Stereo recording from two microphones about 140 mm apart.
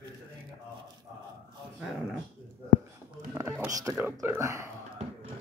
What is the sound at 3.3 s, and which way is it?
Speech, 20° right (ahead or behind).